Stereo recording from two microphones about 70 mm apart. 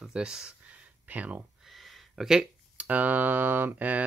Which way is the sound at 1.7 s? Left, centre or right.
Centre.